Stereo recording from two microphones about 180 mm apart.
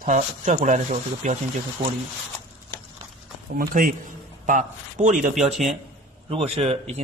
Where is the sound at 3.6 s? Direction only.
50° right (ahead or behind).